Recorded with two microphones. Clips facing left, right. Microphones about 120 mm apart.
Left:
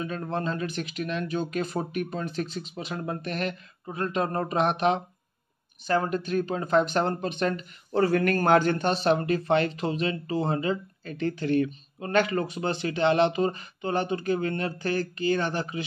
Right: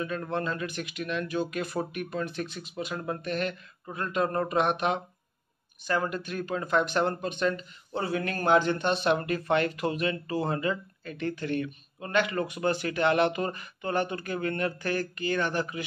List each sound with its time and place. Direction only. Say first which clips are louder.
0.0 s speech: left 1 dB; 30° left (ahead or behind)
8.1 s speech: left 1 dB; 55° left (ahead or behind); by 15.8 s 30° left (ahead or behind)